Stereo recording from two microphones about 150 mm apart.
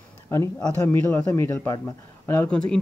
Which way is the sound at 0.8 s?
15° left (ahead or behind).